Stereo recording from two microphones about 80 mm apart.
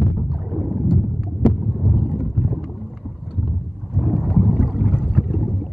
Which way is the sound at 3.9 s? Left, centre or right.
Centre.